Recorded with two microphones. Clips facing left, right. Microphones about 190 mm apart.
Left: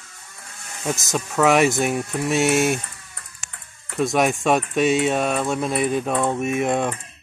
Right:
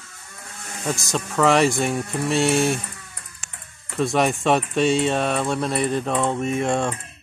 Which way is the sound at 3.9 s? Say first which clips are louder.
Left 1 dB; centre (ahead or behind).